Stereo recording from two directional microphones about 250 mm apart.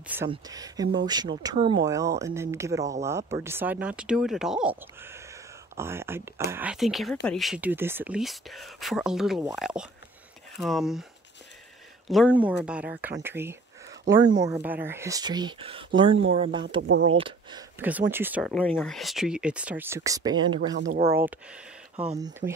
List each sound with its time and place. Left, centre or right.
0.3 s speech: centre
12.1 s speech: centre; by 16.6 s right
16.8 s speech: right
17.2 s speech: centre
20.9 s speech: right